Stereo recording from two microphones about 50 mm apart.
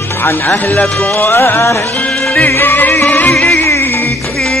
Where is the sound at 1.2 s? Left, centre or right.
Left.